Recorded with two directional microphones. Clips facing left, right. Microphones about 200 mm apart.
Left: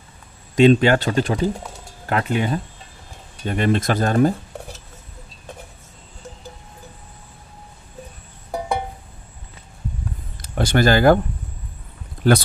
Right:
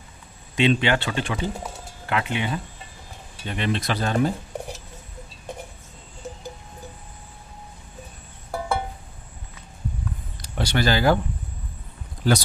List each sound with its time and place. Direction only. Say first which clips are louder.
0.6 s speech: left 7 dB; 45° left (ahead or behind)
8.5 s music: left 2 dB; 20° left (ahead or behind)
10.4 s speech: left 6 dB; 45° left (ahead or behind)
12.2 s speech: left 5 dB; 60° left (ahead or behind)